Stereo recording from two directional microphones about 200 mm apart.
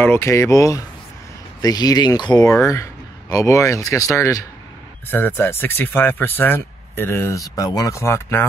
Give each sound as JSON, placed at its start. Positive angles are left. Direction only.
{"t": 0.0, "sound": "speech", "side_deg": 10}